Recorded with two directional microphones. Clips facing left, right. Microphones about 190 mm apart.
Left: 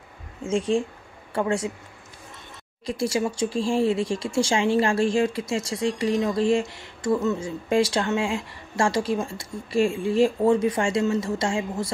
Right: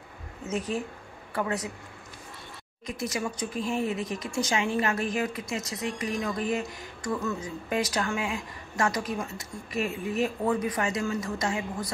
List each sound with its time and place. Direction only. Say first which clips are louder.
0.4 s a woman's voice: left 7 dB; 25° left (ahead or behind)
2.9 s a woman's voice: left 7 dB; 30° left (ahead or behind)